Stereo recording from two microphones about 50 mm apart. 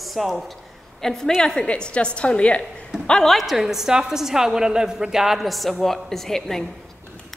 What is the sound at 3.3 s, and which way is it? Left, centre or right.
A woman's voice, centre.